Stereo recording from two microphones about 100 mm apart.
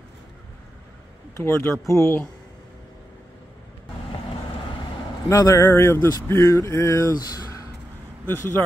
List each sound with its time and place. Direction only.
1.3 s speech: 25° left (ahead or behind)
5.3 s speech: 30° left (ahead or behind)
8.3 s speech: 25° left (ahead or behind)